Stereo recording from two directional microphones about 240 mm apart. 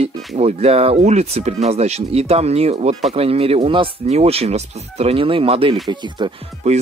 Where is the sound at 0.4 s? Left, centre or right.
Right.